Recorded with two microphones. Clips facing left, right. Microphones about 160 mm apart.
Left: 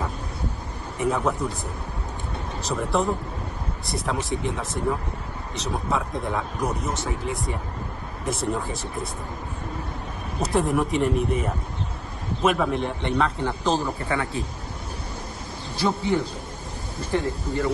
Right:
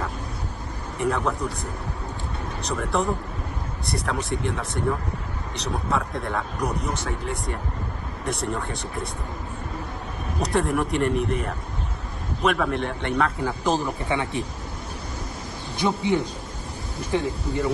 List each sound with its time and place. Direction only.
0.9 s speech: centre (ahead or behind)
2.6 s speech: centre (ahead or behind)
10.4 s speech: centre (ahead or behind)
14.0 s a man's voice: 20° right (ahead or behind)
15.8 s speech: 20° right (ahead or behind)